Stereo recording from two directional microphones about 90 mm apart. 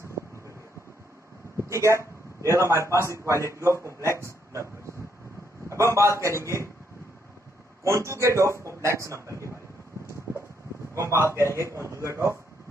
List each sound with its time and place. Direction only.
1.7 s a man's voice: 35° right (ahead or behind)
5.7 s a man's voice: 35° right (ahead or behind)
7.8 s a man's voice: 35° right (ahead or behind)
10.3 s a sound: 30° right (ahead or behind)
11.0 s a man's voice: 30° right (ahead or behind)